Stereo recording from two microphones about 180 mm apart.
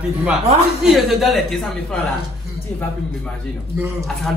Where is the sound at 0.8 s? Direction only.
Centre (ahead or behind).